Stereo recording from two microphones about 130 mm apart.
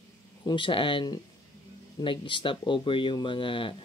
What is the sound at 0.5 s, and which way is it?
Speech, 40° left (ahead or behind).